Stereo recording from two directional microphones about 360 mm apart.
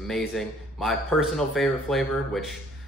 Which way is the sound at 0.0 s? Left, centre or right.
Centre.